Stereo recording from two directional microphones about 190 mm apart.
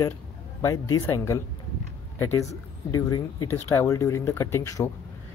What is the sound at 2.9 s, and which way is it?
Speech, 15° left (ahead or behind).